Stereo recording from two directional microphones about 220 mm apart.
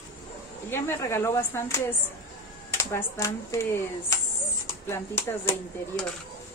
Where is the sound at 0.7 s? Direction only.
10° left (ahead or behind).